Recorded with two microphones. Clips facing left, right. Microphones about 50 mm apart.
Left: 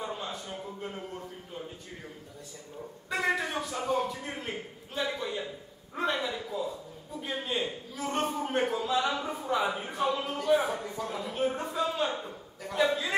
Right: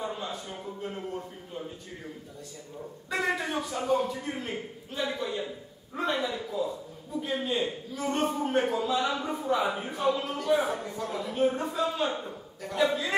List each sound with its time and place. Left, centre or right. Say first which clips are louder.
0.0 s a sound: right 2 dB; centre
3.1 s a man's voice: even; centre
9.9 s a man's voice: right 2 dB; centre